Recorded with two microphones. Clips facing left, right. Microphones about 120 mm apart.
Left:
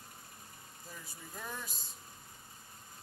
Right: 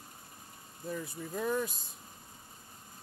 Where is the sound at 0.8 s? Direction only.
55° right (ahead or behind).